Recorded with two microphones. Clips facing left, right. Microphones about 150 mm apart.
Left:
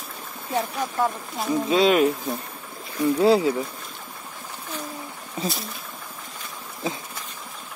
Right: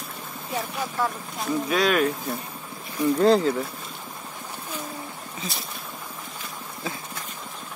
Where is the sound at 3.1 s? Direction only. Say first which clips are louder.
Even; 10° left (ahead or behind).